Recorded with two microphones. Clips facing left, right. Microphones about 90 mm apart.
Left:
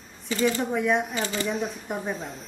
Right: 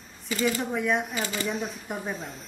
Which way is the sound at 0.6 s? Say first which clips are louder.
Left 3 dB; centre (ahead or behind).